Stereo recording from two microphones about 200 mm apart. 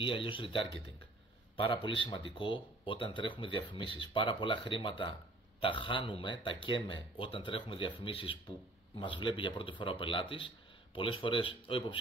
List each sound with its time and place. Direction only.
0.0 s speech: 25° left (ahead or behind)
1.6 s speech: 25° left (ahead or behind)